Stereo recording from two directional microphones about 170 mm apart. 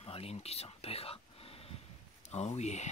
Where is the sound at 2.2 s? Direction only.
40° left (ahead or behind).